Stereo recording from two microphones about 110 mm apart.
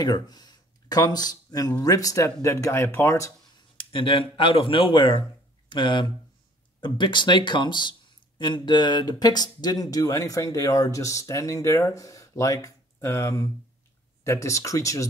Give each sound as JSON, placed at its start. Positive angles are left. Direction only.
{"t": 0.0, "sound": "speech", "side_deg": 35}
{"t": 3.5, "sound": "speech", "side_deg": 50}